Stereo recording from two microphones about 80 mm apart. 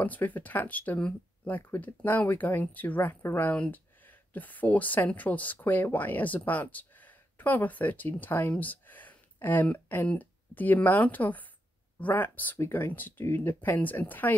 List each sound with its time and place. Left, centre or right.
0.0 s speech: left